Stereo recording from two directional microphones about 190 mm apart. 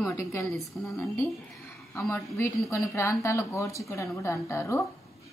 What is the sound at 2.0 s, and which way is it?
Speech, 10° left (ahead or behind).